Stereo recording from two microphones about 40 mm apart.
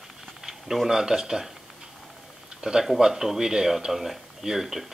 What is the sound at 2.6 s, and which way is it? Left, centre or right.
Speech, centre.